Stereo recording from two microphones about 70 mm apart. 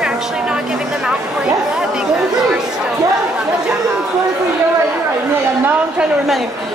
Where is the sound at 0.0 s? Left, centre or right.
Centre.